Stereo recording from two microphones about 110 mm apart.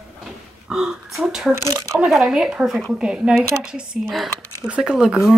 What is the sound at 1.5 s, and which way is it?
Speech, 25° right (ahead or behind).